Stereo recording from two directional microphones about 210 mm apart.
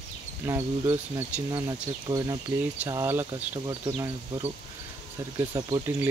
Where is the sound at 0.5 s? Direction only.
15° right (ahead or behind).